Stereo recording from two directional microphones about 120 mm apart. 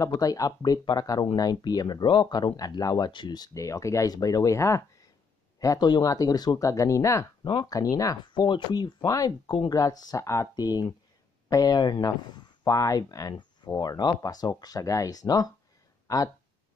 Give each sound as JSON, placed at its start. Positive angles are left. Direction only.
{"t": 0.0, "sound": "speech", "side_deg": 30}
{"t": 7.4, "sound": "speech", "side_deg": 35}